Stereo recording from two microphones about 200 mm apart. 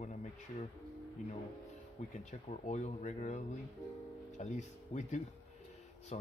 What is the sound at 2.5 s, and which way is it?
Speech, 35° left (ahead or behind).